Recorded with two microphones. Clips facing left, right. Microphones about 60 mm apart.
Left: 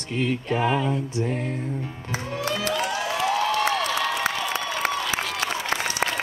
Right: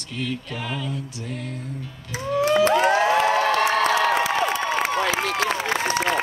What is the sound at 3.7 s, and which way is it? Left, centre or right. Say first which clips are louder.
Crowd: right 5 dB; right.